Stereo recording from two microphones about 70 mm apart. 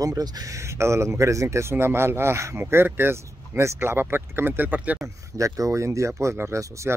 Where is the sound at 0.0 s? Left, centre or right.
Right.